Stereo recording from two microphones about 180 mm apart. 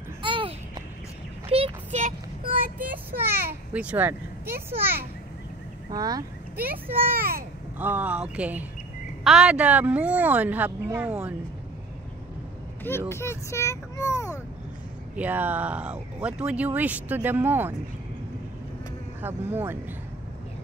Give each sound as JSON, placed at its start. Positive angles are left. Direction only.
{"t": 0.2, "sound": "a sound", "side_deg": -30}
{"t": 3.2, "sound": "a child's voice", "side_deg": -10}
{"t": 6.5, "sound": "speech", "side_deg": -10}
{"t": 7.2, "sound": "a child's voice", "side_deg": -55}
{"t": 7.8, "sound": "speech", "side_deg": -10}
{"t": 13.1, "sound": "a child's voice", "side_deg": 15}
{"t": 15.1, "sound": "speech", "side_deg": -10}
{"t": 19.2, "sound": "speech", "side_deg": -10}